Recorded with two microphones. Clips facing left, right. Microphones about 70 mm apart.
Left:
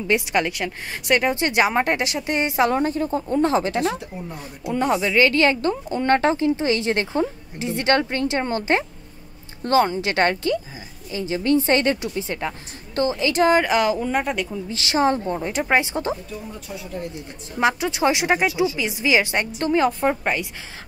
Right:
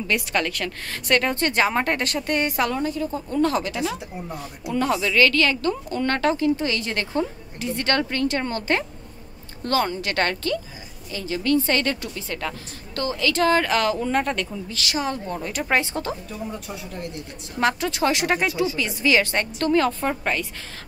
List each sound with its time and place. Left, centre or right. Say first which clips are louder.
0.0 s a woman's voice: left 3 dB; centre
2.7 s speech: left 4 dB; left
4.6 s a woman's voice: left 2 dB; left
14.7 s speech: left 9 dB; left
17.6 s a woman's voice: left 1 dB; centre